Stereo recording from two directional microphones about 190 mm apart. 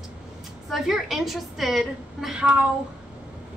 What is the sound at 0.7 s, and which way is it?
A woman's voice, centre (ahead or behind).